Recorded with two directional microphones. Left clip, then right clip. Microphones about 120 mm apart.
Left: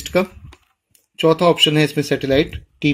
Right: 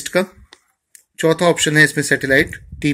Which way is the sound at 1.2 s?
Centre (ahead or behind).